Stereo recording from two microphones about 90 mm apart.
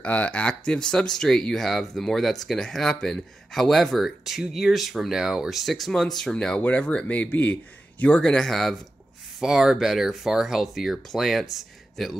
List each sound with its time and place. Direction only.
0.0 s speech: 15° left (ahead or behind)